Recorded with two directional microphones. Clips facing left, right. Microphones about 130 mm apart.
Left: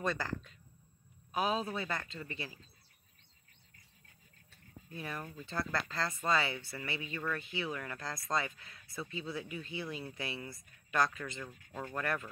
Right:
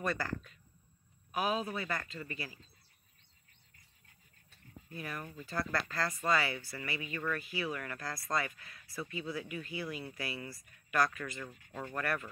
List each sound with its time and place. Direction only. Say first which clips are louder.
0.0 s a man's voice: even; 20° left (ahead or behind)
4.9 s speech: even; 25° left (ahead or behind)